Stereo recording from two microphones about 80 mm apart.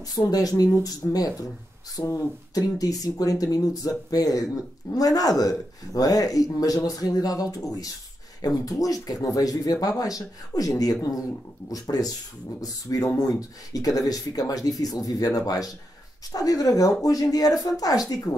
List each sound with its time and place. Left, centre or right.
0.1 s speech: left